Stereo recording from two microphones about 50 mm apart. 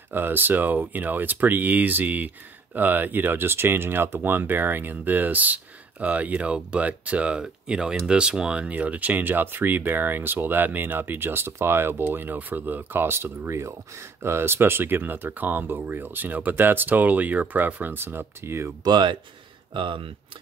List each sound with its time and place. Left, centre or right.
0.1 s speech: right; by 8.7 s centre
8.7 s speech: right
14.2 s speech: right
18.0 s speech: right